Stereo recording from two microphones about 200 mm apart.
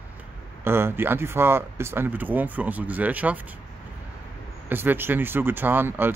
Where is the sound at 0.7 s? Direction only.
10° right (ahead or behind).